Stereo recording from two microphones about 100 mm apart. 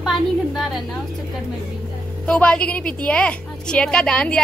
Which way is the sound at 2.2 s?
10° left (ahead or behind).